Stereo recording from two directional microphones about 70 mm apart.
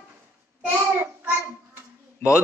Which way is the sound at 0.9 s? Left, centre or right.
Right.